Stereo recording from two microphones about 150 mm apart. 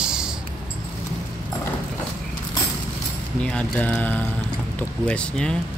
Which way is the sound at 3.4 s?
10° left (ahead or behind).